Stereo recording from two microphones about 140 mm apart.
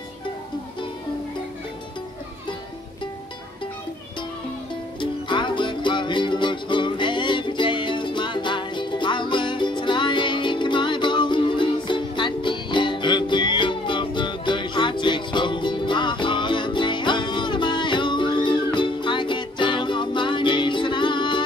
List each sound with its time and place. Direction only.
5.0 s music: 35° left (ahead or behind)